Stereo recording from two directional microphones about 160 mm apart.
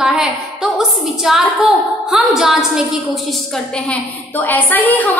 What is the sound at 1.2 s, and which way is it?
A woman's voice, centre (ahead or behind).